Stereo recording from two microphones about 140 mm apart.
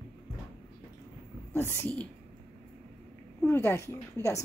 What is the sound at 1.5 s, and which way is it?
Speech, 15° left (ahead or behind).